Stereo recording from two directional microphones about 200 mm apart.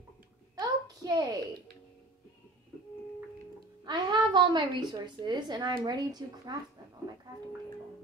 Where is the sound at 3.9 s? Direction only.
20° right (ahead or behind).